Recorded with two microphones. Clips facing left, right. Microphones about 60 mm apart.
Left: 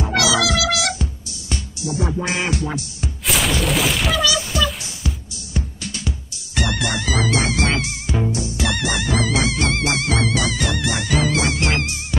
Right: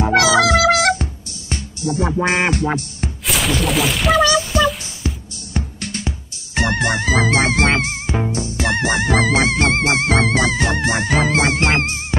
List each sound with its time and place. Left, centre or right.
0.1 s music: right
3.3 s a sound: centre
4.5 s music: right
5.5 s music: right